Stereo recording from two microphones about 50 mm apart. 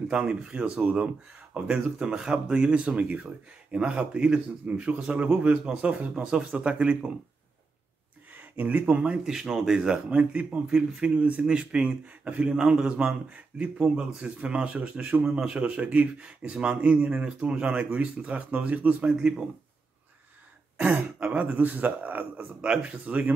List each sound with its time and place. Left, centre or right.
0.2 s a man's voice: right
8.4 s speech: right
9.0 s speech: centre
10.0 s a man's voice: right
19.1 s speech: centre
21.3 s a man's voice: right
22.6 s a man's voice: right